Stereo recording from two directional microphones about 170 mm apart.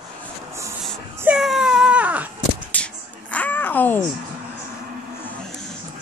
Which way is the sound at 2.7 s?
10° left (ahead or behind).